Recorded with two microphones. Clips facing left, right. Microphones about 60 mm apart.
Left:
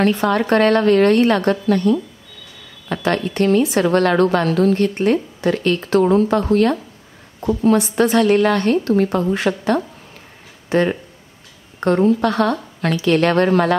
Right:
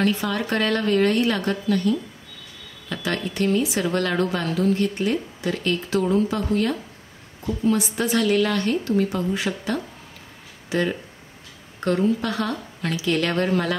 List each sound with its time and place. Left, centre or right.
0.0 s a woman's voice: left
12.1 s a woman's voice: left